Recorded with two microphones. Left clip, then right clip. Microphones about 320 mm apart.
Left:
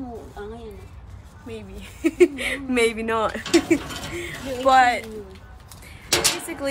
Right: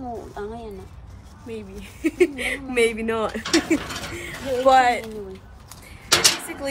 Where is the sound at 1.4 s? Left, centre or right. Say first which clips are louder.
Right 2 dB; centre.